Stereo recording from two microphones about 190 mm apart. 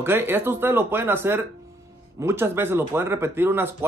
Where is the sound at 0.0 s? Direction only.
10° right (ahead or behind).